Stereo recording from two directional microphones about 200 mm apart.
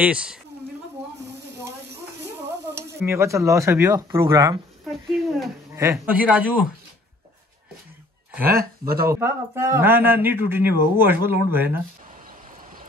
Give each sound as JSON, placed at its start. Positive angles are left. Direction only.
{"t": 0.0, "sound": "speech", "side_deg": -5}
{"t": 2.7, "sound": "a man's voice", "side_deg": -15}
{"t": 5.2, "sound": "a sound", "side_deg": 0}
{"t": 5.8, "sound": "a man's voice", "side_deg": -10}
{"t": 8.5, "sound": "speech", "side_deg": -50}
{"t": 9.1, "sound": "a man's voice", "side_deg": -10}